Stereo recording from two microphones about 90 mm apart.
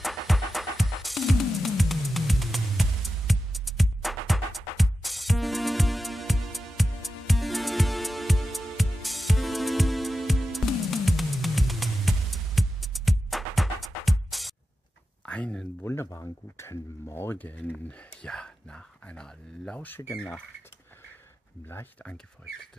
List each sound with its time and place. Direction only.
0.0 s music: centre (ahead or behind)
15.2 s a sound: 10° left (ahead or behind)
15.8 s speech: 30° left (ahead or behind); by 20.4 s 10° left (ahead or behind)